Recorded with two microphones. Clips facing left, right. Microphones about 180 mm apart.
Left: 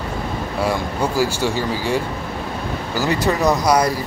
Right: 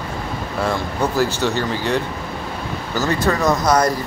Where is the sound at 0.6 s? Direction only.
10° left (ahead or behind).